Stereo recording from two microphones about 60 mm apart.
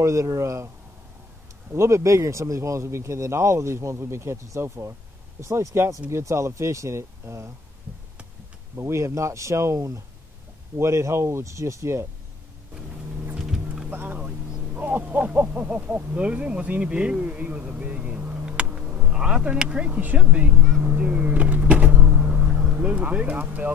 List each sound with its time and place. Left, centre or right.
0.0 s speech: right
1.7 s speech: right
6.0 s speech: right
8.7 s speech: right
13.4 s boat: centre
13.8 s speech: right
18.7 s vehicle: right
19.0 s speech: centre
20.8 s vehicle: right